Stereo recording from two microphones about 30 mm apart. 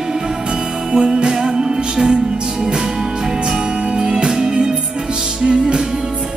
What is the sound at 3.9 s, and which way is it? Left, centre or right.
Music, right.